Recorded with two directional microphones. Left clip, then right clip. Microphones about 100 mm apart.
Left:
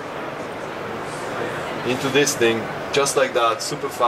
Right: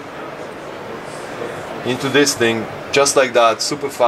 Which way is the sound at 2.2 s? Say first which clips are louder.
Right 3 dB; 20° right (ahead or behind).